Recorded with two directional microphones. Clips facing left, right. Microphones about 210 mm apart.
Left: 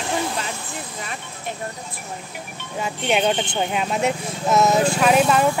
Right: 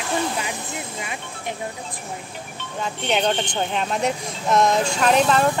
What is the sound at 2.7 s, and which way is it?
Speech, 10° left (ahead or behind).